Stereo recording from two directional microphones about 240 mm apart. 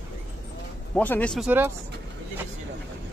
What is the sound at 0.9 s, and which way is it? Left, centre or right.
Speech, centre.